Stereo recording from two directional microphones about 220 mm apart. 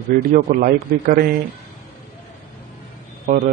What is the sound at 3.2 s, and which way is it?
Speech, 45° right (ahead or behind).